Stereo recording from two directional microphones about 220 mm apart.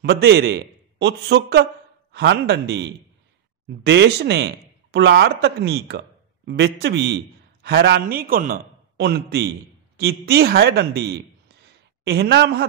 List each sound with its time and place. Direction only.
0.0 s a man's voice: 50° right (ahead or behind)